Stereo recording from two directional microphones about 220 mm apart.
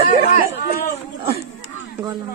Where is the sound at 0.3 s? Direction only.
40° left (ahead or behind).